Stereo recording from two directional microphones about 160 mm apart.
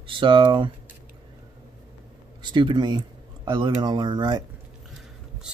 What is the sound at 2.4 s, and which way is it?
Speech, 30° right (ahead or behind).